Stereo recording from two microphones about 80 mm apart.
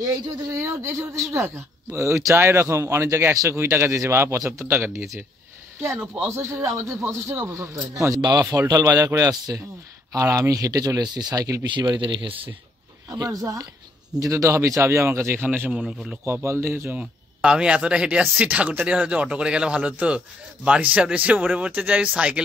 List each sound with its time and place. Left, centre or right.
0.6 s speech: right
8.2 s speech: right
8.6 s speech: right
10.1 s speech: right
10.5 s speech: right
11.6 s speech: right
13.1 s speech: right
15.8 s speech: centre
16.3 s speech: right
17.0 s speech: centre